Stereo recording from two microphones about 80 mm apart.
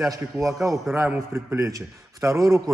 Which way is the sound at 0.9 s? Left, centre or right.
Right.